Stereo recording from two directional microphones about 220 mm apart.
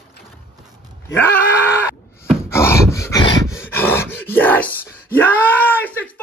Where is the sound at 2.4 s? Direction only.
10° left (ahead or behind).